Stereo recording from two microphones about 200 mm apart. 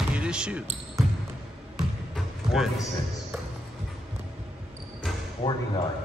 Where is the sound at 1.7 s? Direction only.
Centre (ahead or behind).